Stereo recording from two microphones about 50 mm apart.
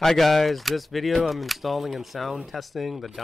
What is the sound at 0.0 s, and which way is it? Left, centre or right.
Speech, centre.